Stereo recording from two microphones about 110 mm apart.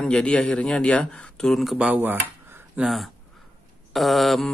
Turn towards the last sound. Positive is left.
turn(degrees=0)  # may be behind; listen again after turning